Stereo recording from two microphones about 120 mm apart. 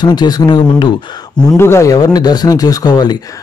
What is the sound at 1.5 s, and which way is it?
Speech, 20° left (ahead or behind).